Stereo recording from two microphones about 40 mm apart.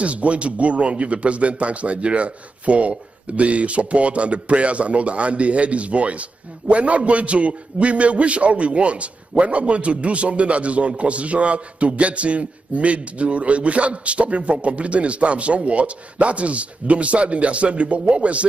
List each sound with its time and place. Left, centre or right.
0.0 s a man's voice: right